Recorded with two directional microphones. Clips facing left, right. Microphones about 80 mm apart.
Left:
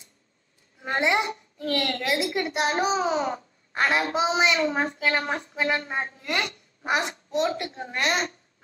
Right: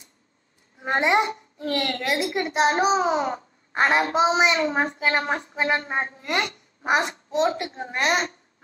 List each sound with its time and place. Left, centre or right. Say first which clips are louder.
0.7 s a woman's voice: right 3 dB; right